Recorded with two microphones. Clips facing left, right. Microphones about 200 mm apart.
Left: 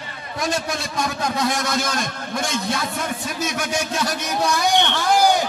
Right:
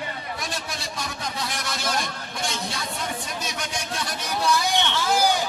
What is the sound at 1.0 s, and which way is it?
Speech, 90° left.